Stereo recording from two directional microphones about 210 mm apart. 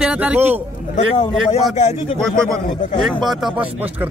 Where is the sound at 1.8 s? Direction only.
30° left (ahead or behind).